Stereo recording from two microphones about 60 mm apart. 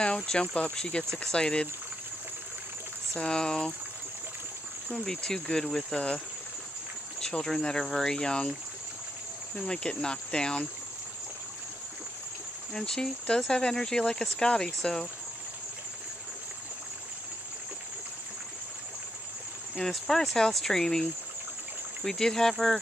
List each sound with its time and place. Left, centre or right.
0.0 s speech: centre
3.2 s speech: centre
4.9 s speech: centre
7.5 s speech: centre
9.7 s speech: centre
12.7 s speech: centre
19.8 s speech: centre